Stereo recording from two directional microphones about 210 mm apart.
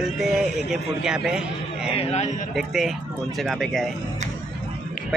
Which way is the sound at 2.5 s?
Centre (ahead or behind).